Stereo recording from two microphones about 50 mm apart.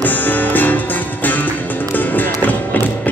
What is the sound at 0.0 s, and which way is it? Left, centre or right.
Music, left.